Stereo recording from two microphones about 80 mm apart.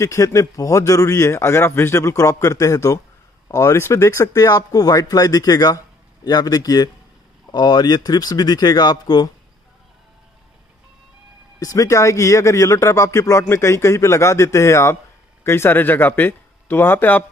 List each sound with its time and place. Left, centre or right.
0.0 s speech: left
11.6 s speech: left